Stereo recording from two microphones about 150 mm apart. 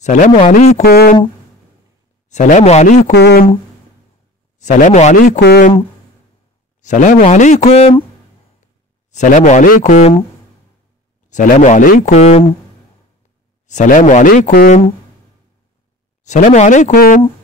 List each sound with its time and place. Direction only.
0.0 s speech: 50° left (ahead or behind)
0.8 s speech: 90° left
2.2 s speech: 50° left (ahead or behind)
3.1 s speech: 90° left
4.6 s speech: 55° left (ahead or behind)
5.4 s speech: 80° left
6.8 s speech: 55° left (ahead or behind)
9.1 s speech: 55° left (ahead or behind)
11.2 s speech: 55° left (ahead or behind)
13.7 s speech: 55° left (ahead or behind); by 14.7 s 80° left
16.3 s speech: 55° left (ahead or behind)
16.9 s speech: 85° left